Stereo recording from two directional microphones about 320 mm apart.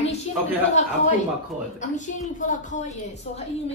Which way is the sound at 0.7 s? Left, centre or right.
Left.